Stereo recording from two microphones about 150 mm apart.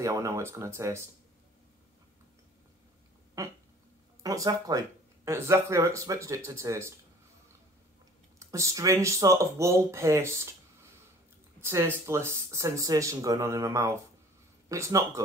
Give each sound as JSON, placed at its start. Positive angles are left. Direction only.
{"t": 0.0, "sound": "speech", "side_deg": -20}
{"t": 3.4, "sound": "a sound", "side_deg": -20}
{"t": 4.2, "sound": "speech", "side_deg": -25}
{"t": 8.4, "sound": "speech", "side_deg": -20}
{"t": 11.6, "sound": "speech", "side_deg": -15}